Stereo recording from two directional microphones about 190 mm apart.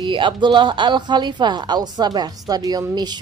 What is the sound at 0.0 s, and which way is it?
A woman's voice, 25° right (ahead or behind).